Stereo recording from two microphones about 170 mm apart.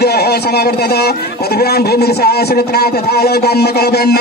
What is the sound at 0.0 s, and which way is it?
A man's voice, 70° left (ahead or behind).